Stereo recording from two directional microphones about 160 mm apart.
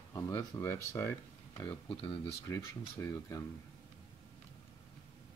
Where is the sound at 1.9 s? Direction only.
35° left (ahead or behind).